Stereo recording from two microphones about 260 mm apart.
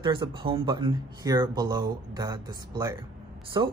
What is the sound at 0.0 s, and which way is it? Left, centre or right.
Speech, centre.